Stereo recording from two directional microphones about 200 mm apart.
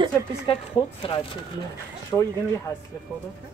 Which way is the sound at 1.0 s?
25° left (ahead or behind).